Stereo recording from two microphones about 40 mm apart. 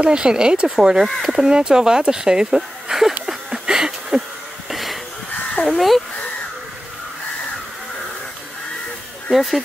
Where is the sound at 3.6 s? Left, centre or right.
Centre.